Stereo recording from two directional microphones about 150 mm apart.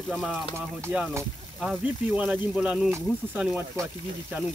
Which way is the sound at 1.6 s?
Centre (ahead or behind).